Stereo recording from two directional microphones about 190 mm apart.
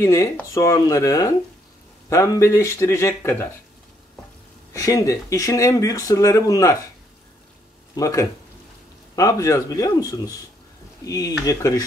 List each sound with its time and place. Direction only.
0.0 s speech: 15° left (ahead or behind)
4.7 s speech: 15° left (ahead or behind)
7.9 s a man's voice: 15° left (ahead or behind)